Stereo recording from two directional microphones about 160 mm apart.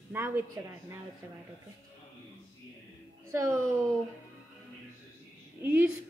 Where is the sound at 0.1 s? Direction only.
15° right (ahead or behind).